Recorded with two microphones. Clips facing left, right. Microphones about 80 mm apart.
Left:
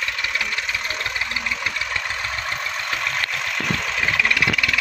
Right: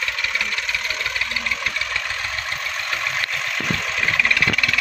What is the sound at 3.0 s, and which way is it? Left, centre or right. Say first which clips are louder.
Vehicle: even; centre.